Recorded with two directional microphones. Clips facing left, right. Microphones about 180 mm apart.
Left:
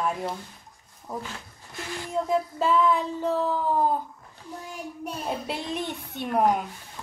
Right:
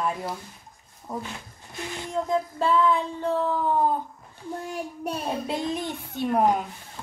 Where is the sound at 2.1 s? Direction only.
5° left (ahead or behind).